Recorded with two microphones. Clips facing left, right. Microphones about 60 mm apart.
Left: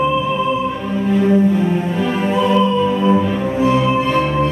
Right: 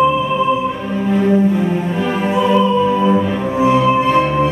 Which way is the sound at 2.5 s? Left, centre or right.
Centre.